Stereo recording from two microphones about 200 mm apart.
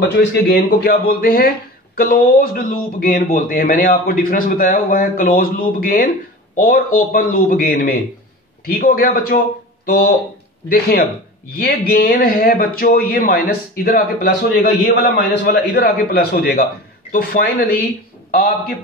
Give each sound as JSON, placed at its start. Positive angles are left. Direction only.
{"t": 0.1, "sound": "speech", "side_deg": 55}
{"t": 10.7, "sound": "speech", "side_deg": 50}